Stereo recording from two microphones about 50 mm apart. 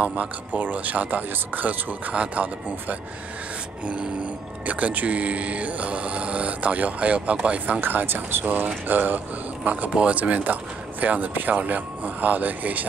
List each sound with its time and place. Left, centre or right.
0.0 s speech: right
7.8 s speech: right
8.5 s speech: right